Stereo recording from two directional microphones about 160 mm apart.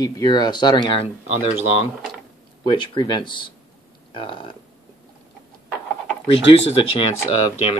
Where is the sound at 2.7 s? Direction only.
30° left (ahead or behind).